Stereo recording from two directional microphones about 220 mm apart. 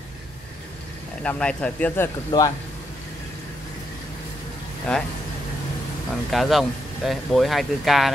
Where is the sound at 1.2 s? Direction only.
5° left (ahead or behind).